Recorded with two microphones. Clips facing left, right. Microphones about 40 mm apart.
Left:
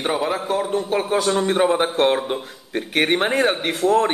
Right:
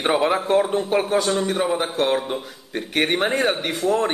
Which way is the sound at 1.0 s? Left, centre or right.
Centre.